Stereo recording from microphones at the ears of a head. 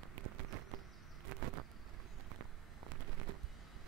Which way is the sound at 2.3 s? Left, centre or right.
Right.